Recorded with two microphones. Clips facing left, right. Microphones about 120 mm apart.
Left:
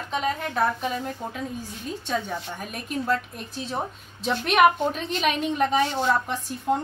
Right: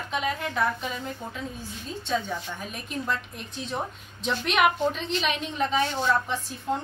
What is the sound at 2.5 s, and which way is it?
Speech, 50° left (ahead or behind).